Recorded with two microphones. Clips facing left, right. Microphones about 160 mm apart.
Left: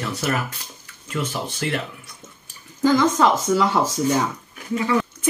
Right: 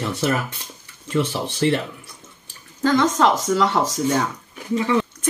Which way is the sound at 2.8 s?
5° left (ahead or behind).